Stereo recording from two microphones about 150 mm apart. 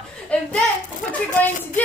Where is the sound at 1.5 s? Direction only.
60° left (ahead or behind).